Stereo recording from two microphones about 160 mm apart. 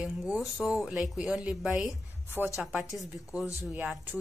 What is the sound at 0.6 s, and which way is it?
Speech, centre (ahead or behind).